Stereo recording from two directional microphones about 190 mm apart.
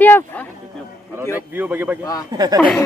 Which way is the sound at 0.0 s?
10° left (ahead or behind).